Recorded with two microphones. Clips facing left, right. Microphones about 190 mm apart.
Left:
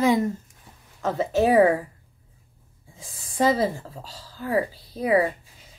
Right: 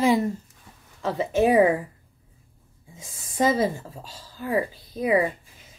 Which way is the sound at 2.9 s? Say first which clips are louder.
Even; 25° right (ahead or behind).